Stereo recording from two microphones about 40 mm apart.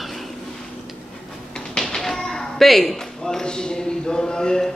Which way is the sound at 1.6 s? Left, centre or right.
Centre.